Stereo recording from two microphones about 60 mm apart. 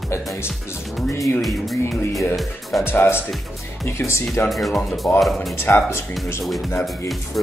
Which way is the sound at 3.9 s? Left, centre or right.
Left.